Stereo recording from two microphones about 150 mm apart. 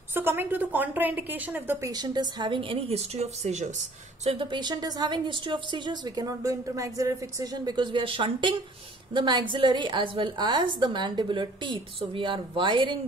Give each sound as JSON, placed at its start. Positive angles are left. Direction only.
{"t": 0.1, "sound": "a woman's voice", "side_deg": -15}
{"t": 1.9, "sound": "a woman's voice", "side_deg": -30}
{"t": 4.2, "sound": "a woman's voice", "side_deg": -35}